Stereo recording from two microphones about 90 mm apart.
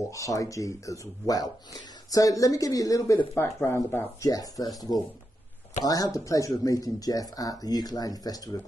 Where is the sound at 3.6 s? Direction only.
30° left (ahead or behind).